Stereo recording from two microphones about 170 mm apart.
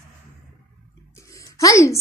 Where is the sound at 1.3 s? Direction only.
20° left (ahead or behind).